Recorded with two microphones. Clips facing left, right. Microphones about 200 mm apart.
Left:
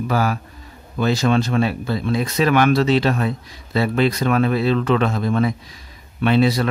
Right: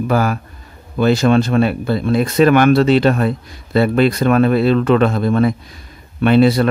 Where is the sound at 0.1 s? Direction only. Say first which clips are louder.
Right 4 dB; 55° right (ahead or behind).